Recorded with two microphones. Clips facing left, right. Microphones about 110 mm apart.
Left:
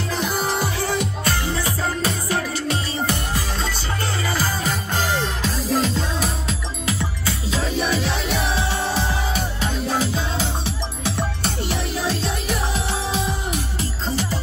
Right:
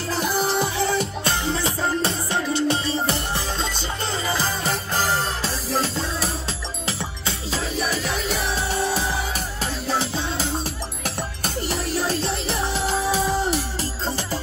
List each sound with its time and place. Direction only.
0.6 s music: 25° right (ahead or behind)
4.6 s music: 40° right (ahead or behind)
8.9 s music: 40° right (ahead or behind)